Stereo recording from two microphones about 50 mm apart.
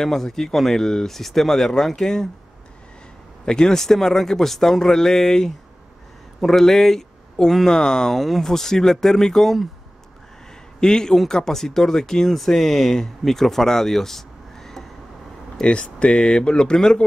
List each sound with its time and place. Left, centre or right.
0.0 s speech: centre
3.4 s speech: centre
10.8 s speech: centre
15.6 s speech: left